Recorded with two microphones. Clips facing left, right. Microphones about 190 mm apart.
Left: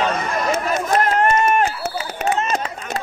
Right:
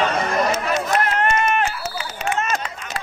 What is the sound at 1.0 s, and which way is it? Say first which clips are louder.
Run: left 6 dB; 40° left (ahead or behind).